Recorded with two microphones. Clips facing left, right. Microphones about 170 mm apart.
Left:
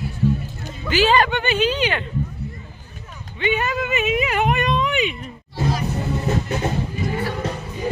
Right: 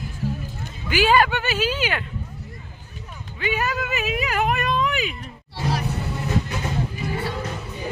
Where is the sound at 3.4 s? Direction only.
Centre (ahead or behind).